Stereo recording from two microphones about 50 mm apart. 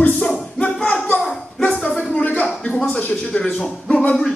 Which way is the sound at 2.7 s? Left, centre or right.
Centre.